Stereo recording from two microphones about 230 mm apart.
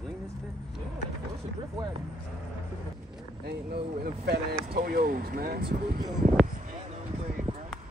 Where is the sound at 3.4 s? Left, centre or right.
Right.